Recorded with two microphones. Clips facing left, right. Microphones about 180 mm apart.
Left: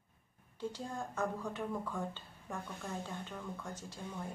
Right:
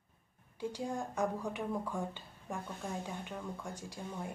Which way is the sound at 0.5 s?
10° right (ahead or behind).